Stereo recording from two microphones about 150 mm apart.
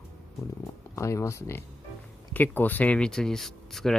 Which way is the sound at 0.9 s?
20° left (ahead or behind).